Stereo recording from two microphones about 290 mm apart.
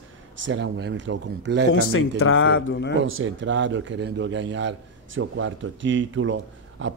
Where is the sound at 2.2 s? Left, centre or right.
Left.